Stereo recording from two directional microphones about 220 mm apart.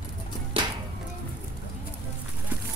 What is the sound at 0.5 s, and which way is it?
Music, 25° right (ahead or behind).